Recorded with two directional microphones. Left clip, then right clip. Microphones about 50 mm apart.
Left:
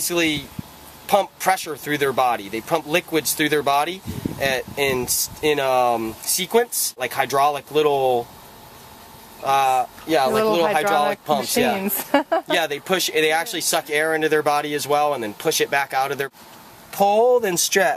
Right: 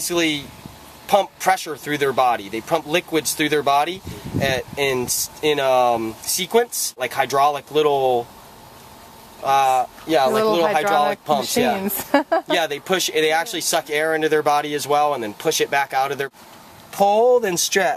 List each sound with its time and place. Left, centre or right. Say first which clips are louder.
0.0 s speech: even; centre
9.4 s speech: right 1 dB; centre
12.1 s speech: right 1 dB; centre
12.4 s speech: right 1 dB; centre